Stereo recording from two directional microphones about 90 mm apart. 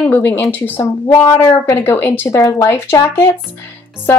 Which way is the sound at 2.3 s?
40° left (ahead or behind).